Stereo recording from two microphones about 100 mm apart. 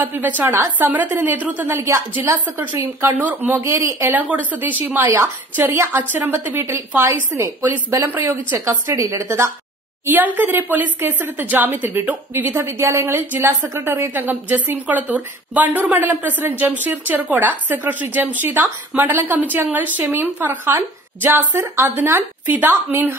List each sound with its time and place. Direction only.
0.0 s a woman's voice: 20° right (ahead or behind)
1.8 s a woman's voice: 30° right (ahead or behind)
2.1 s a woman's voice: 20° right (ahead or behind)